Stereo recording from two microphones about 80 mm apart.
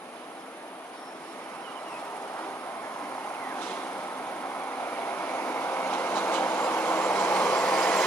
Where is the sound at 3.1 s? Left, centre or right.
Left.